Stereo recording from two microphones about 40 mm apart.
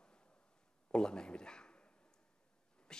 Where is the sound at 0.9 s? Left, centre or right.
Left.